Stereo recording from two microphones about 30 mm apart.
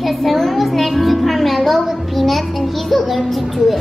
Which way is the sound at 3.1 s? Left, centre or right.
Centre.